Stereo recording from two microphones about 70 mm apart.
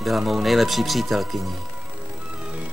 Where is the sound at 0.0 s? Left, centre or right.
Centre.